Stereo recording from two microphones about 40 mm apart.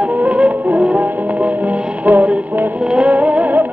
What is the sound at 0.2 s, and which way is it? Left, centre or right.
Music, right.